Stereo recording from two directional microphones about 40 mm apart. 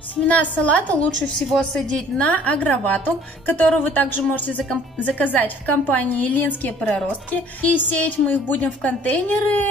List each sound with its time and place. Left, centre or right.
0.1 s a woman's voice: left
1.5 s a woman's voice: centre
2.1 s a woman's voice: left